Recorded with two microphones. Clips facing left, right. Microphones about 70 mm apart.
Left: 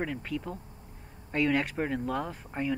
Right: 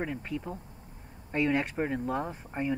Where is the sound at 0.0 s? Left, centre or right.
Right.